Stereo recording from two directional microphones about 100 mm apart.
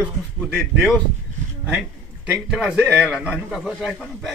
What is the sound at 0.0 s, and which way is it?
Speech, 15° right (ahead or behind).